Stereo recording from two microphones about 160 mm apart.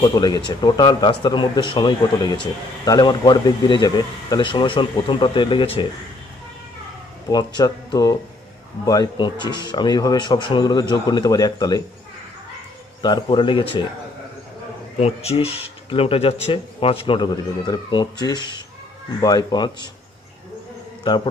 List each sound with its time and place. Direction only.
0.0 s speech: 25° left (ahead or behind)
7.2 s speech: 25° left (ahead or behind)
13.0 s speech: 25° left (ahead or behind)
15.0 s speech: 40° left (ahead or behind)